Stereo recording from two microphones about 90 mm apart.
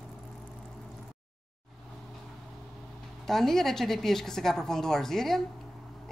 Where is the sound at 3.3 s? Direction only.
5° left (ahead or behind).